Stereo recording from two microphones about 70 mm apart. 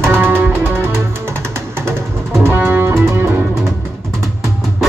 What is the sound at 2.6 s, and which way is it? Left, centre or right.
Music, right.